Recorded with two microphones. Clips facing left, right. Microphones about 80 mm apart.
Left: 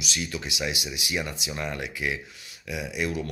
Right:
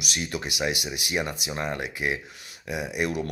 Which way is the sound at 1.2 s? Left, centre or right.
Right.